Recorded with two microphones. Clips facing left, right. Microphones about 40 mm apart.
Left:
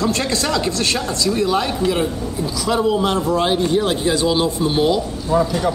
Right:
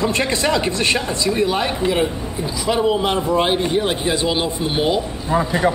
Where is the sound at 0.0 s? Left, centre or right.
Right.